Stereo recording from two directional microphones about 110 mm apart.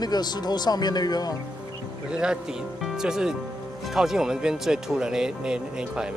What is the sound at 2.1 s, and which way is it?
Speech, 5° right (ahead or behind).